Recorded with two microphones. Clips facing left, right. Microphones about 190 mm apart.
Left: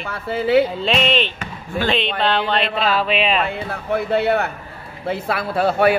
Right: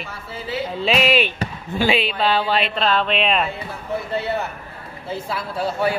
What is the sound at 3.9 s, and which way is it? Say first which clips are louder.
A man's voice: left 6 dB; 65° left (ahead or behind).